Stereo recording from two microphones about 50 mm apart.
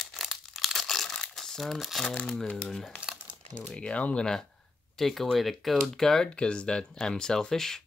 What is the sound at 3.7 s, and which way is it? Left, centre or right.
Speech, left.